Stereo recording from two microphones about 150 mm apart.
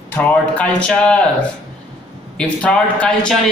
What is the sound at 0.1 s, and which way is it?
Speech, 10° left (ahead or behind).